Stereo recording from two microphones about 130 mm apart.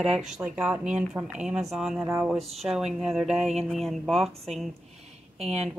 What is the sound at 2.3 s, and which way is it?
Speech, centre (ahead or behind).